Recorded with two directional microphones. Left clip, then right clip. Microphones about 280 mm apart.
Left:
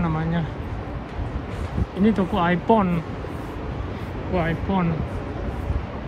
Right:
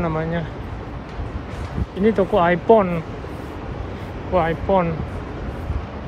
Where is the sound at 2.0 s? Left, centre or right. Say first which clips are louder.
Right 6 dB; centre.